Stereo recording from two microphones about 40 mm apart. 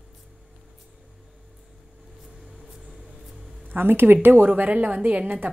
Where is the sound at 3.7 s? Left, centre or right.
Right.